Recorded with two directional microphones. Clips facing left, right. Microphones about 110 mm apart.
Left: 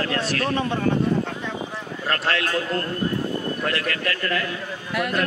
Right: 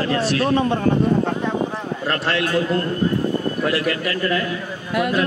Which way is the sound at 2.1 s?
Centre (ahead or behind).